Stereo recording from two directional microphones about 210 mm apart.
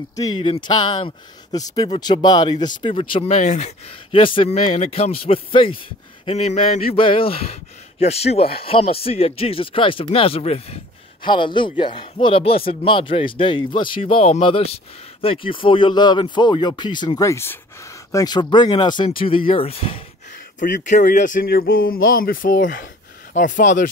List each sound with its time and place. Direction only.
0.4 s speech: 25° left (ahead or behind)
20.5 s speech: 40° left (ahead or behind)